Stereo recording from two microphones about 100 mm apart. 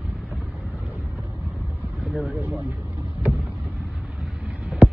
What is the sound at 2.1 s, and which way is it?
Speech, 20° right (ahead or behind).